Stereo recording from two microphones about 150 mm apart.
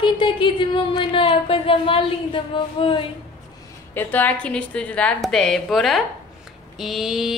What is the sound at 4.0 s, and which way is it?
A woman's voice, 10° left (ahead or behind).